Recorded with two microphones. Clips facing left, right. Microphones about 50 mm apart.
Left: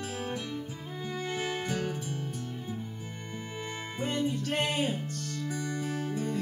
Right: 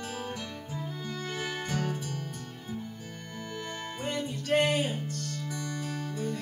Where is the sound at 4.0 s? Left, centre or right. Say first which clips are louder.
Left 4 dB; centre.